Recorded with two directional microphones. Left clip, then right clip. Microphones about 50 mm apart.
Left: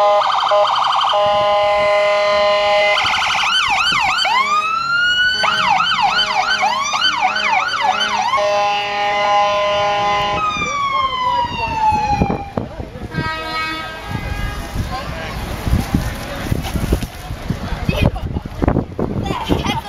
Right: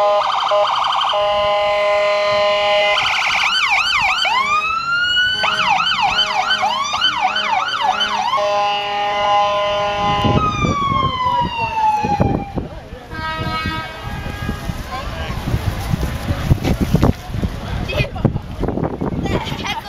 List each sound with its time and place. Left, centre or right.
0.0 s siren: centre
5.4 s emergency vehicle: centre; by 11.1 s left
11.2 s emergency vehicle: left
13.2 s vehicle: left
19.2 s a sound: right